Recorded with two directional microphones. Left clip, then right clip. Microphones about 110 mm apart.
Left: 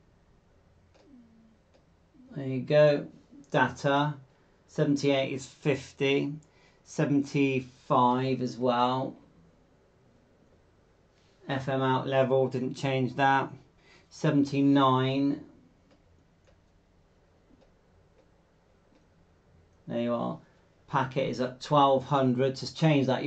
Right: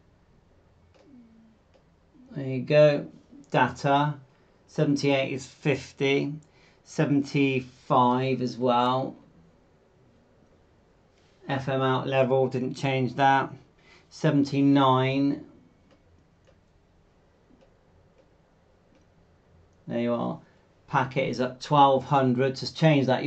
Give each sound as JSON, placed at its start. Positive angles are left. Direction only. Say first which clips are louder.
{"t": 2.3, "sound": "speech", "louder": "right 3 dB", "side_deg": -25}
{"t": 11.4, "sound": "speech", "louder": "right 2 dB", "side_deg": -25}
{"t": 19.9, "sound": "speech", "louder": "right 2 dB", "side_deg": -25}